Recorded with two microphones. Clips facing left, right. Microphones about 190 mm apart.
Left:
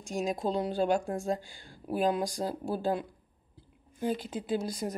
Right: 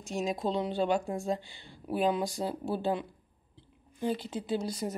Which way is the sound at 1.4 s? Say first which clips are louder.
Left 1 dB; 45° left (ahead or behind).